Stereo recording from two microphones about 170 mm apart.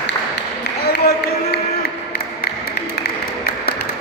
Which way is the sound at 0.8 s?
70° left (ahead or behind).